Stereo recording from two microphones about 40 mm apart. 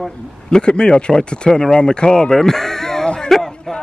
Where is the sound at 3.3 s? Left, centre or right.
Centre.